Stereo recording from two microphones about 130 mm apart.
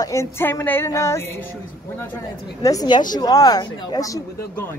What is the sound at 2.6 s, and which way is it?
Speech, 30° left (ahead or behind).